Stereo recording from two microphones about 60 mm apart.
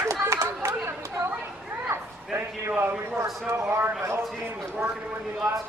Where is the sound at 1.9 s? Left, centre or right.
Right.